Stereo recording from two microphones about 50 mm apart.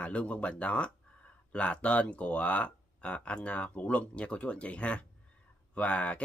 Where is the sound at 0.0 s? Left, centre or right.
Left.